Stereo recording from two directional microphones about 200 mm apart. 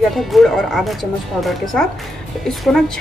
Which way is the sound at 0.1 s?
Centre (ahead or behind).